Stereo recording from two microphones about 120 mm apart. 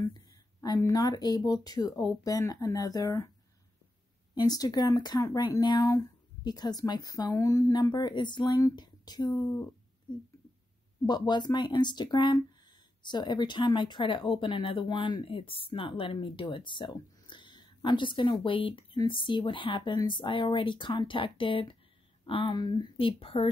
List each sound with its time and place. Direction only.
0.1 s a sound: 35° left (ahead or behind)
0.7 s speech: 30° left (ahead or behind)
4.4 s speech: 35° left (ahead or behind)
11.1 s speech: 35° left (ahead or behind)